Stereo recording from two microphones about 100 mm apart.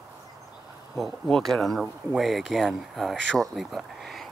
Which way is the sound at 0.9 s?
Centre (ahead or behind).